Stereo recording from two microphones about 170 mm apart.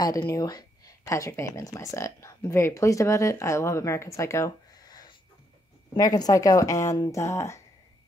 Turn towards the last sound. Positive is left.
turn(degrees=15)  # may be behind; listen again after turning